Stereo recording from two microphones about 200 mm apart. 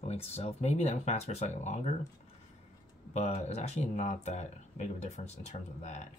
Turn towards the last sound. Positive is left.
turn(degrees=35)  # may be behind; listen again after turning